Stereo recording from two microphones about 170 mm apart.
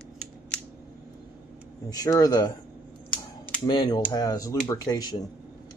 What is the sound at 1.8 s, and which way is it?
Speech, 20° left (ahead or behind).